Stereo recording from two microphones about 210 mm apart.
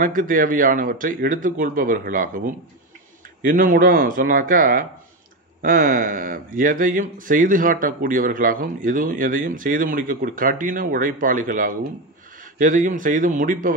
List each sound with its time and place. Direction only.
0.0 s speech: 40° right (ahead or behind)